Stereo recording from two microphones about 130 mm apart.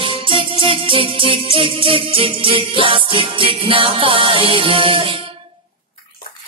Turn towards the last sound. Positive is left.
turn(degrees=-40)  # may be behind; listen again after turning